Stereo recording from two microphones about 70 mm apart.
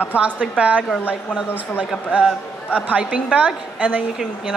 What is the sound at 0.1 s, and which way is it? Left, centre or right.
A woman's voice, centre.